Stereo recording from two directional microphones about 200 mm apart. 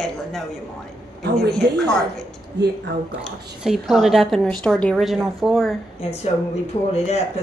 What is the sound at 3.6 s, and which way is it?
A woman's voice, centre (ahead or behind).